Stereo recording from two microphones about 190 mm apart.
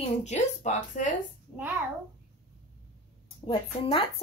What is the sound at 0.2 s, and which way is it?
Speech, 35° left (ahead or behind).